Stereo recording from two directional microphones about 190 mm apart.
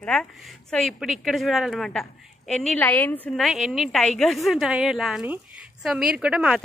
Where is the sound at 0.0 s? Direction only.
5° left (ahead or behind).